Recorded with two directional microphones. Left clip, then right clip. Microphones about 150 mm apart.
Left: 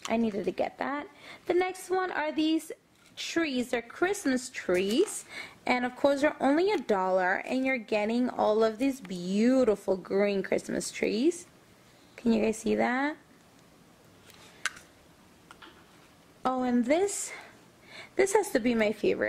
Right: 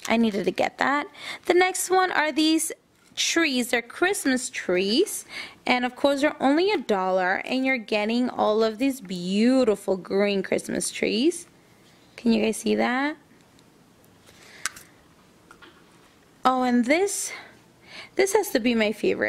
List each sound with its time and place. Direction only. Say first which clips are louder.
0.1 s a woman's voice: right 7 dB; 40° right (ahead or behind)
14.6 s a sound: right 1 dB; 10° right (ahead or behind)
16.4 s a woman's voice: right 6 dB; 35° right (ahead or behind)